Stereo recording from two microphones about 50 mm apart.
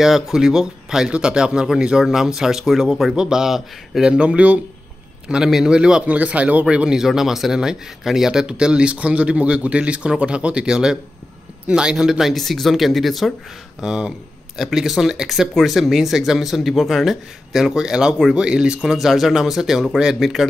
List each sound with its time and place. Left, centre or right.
0.0 s speech: centre
4.1 s speech: right
5.3 s speech: centre
6.0 s speech: right
7.0 s speech: centre
12.4 s speech: centre
13.7 s speech: centre
18.9 s speech: centre
19.9 s speech: centre
20.2 s speech: centre